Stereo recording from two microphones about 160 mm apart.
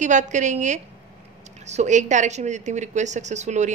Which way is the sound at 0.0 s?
50° right (ahead or behind).